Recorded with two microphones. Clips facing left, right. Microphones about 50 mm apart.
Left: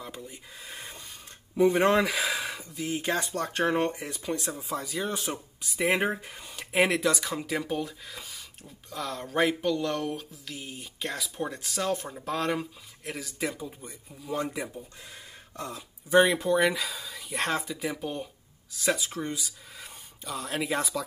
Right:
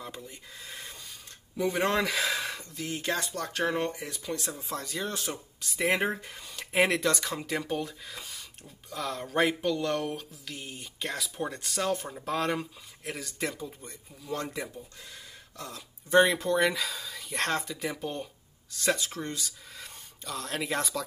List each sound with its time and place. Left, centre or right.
0.0 s speech: centre
1.6 s speech: left
1.9 s speech: centre
16.1 s speech: centre